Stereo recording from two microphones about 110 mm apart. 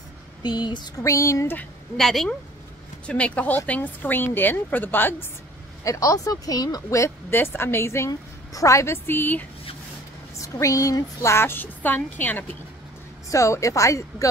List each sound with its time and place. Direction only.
0.4 s a sound: 40° left (ahead or behind)
1.0 s speech: 30° left (ahead or behind)
2.0 s a woman's voice: 5° left (ahead or behind)
5.9 s speech: 30° left (ahead or behind)
10.4 s speech: 30° left (ahead or behind)
13.3 s speech: 30° left (ahead or behind)